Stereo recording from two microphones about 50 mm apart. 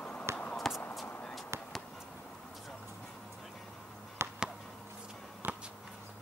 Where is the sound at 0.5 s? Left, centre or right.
Centre.